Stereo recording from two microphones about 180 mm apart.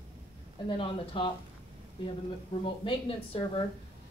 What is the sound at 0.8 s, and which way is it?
Speech, 30° left (ahead or behind).